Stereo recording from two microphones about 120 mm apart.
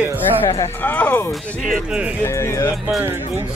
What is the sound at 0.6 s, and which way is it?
Music, 15° left (ahead or behind).